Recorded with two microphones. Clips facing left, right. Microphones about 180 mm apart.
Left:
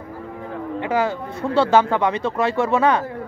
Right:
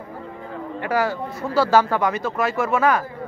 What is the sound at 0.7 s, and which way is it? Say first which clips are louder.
Speech: left 1 dB; 20° left (ahead or behind).